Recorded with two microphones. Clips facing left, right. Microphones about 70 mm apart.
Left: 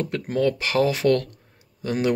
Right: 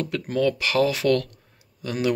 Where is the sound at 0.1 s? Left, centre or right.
Left.